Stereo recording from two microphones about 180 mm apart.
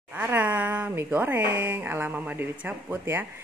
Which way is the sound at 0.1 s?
10° right (ahead or behind).